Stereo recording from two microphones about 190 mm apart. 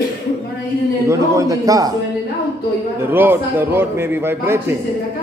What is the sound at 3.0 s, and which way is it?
A man's voice, 10° right (ahead or behind).